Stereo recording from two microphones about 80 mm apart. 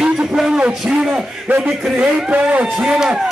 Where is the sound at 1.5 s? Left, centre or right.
Centre.